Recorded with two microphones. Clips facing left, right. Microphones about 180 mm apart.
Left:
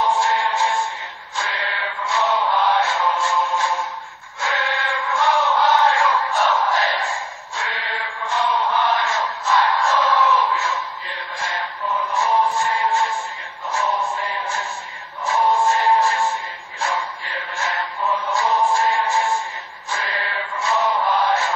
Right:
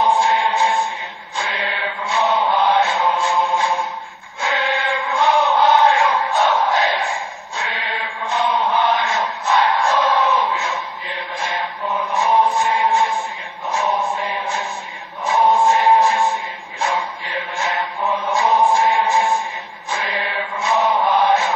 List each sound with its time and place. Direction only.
0.0 s music: 15° right (ahead or behind)
1.3 s mantra: 20° right (ahead or behind)
4.4 s chant: 15° right (ahead or behind)
13.7 s a sound: 15° right (ahead or behind)
15.2 s music: 15° right (ahead or behind)
16.8 s a sound: 15° right (ahead or behind)
19.9 s mantra: 15° right (ahead or behind)